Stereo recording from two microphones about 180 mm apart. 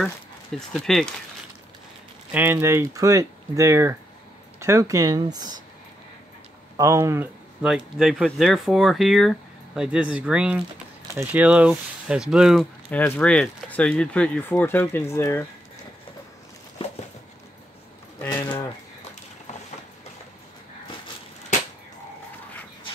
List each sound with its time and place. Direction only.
0.6 s speech: centre (ahead or behind)
2.3 s speech: 10° right (ahead or behind)
6.8 s speech: 15° right (ahead or behind)
7.6 s speech: 5° right (ahead or behind)
12.9 s speech: 10° left (ahead or behind)
18.2 s a sound: 15° left (ahead or behind)